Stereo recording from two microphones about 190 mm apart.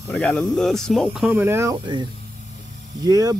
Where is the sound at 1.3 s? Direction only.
10° right (ahead or behind).